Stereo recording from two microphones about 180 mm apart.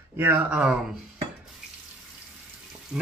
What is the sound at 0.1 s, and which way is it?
Speech, 10° right (ahead or behind).